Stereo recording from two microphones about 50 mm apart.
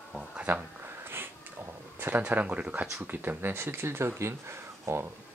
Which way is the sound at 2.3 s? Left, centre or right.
Right.